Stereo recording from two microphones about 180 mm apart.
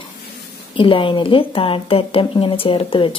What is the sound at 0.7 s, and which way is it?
A woman's voice, 30° left (ahead or behind).